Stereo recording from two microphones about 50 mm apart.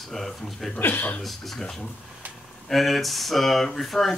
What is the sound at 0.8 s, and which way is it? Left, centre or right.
Speech, left.